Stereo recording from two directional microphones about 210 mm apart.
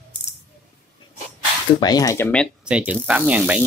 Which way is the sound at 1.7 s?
20° left (ahead or behind).